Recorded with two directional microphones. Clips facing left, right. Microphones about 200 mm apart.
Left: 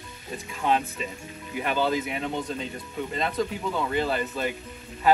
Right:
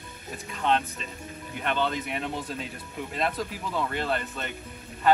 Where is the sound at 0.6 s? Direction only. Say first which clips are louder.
Left 1 dB; 10° left (ahead or behind).